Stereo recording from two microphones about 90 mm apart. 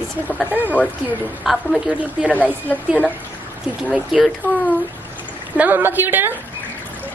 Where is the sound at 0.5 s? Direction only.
20° right (ahead or behind).